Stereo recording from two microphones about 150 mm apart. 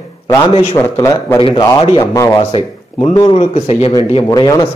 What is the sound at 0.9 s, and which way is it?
A man's voice, 25° left (ahead or behind).